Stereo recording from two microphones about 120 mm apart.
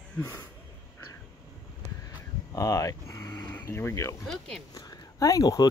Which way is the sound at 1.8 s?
30° left (ahead or behind).